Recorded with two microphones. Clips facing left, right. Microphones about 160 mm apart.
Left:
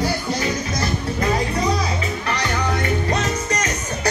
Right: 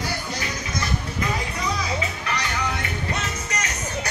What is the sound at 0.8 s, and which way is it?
Music, 35° left (ahead or behind).